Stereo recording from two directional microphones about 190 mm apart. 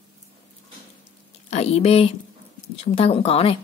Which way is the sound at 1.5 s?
35° left (ahead or behind).